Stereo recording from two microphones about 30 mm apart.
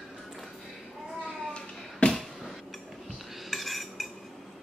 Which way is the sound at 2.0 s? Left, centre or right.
Left.